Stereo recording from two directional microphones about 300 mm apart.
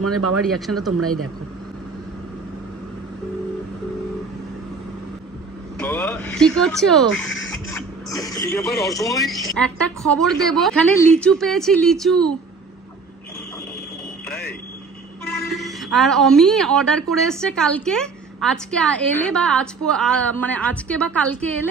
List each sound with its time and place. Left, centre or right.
0.0 s speech: right
0.5 s a woman's voice: centre
0.9 s speech: right
5.8 s speech: centre
7.7 s a woman's voice: centre
15.5 s a woman's voice: centre